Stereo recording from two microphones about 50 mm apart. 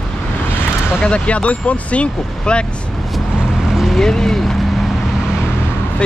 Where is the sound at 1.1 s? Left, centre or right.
Left.